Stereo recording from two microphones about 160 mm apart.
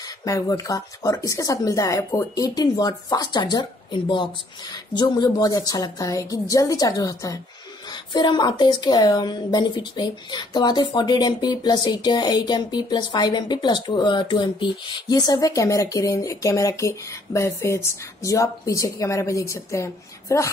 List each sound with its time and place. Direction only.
0.2 s a woman's voice: 20° left (ahead or behind)